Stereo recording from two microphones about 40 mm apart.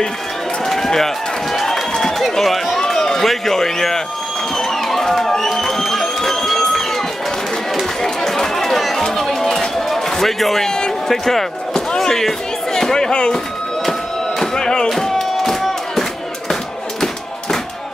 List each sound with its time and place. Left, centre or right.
0.7 s run: centre
4.6 s music: centre
8.3 s chatter: centre
9.0 s music: centre
9.8 s a sound: centre
14.4 s music: centre